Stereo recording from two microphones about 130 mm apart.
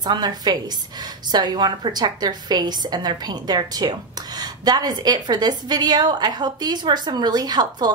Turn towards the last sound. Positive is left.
turn(degrees=-30)  # may be behind; listen again after turning